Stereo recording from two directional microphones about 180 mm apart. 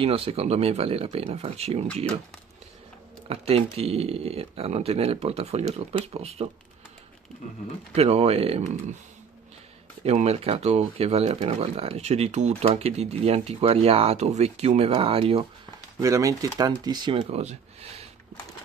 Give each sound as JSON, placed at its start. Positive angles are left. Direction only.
{"t": 0.0, "sound": "speech", "side_deg": -30}
{"t": 3.3, "sound": "speech", "side_deg": -35}
{"t": 7.9, "sound": "speech", "side_deg": -35}
{"t": 10.0, "sound": "speech", "side_deg": -35}
{"t": 16.0, "sound": "speech", "side_deg": -20}